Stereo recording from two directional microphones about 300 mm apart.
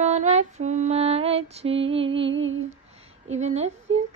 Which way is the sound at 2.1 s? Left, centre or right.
Right.